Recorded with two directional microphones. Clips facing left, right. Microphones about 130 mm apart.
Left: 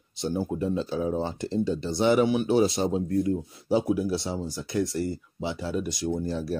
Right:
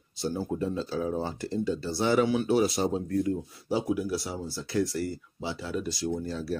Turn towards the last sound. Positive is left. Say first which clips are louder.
# left 3 dB
turn(degrees=20)  # may be behind; listen again after turning